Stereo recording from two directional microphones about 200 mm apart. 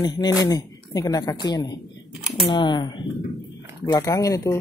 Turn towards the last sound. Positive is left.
turn(degrees=15)  # may be behind; listen again after turning